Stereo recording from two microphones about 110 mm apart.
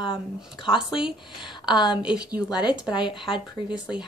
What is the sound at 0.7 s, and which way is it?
Speech, 5° right (ahead or behind).